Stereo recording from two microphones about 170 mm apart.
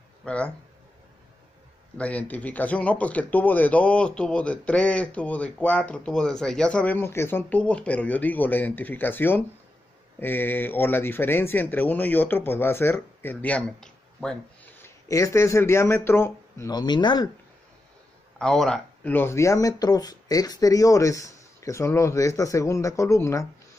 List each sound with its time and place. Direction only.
0.2 s speech: 5° left (ahead or behind)
2.0 s speech: 10° left (ahead or behind); by 17.3 s 25° left (ahead or behind)
18.4 s speech: 5° left (ahead or behind)